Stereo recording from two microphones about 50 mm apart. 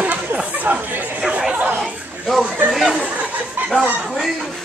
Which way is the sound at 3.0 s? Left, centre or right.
Right.